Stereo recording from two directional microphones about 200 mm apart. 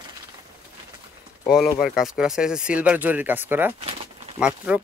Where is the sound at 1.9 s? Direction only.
Centre (ahead or behind).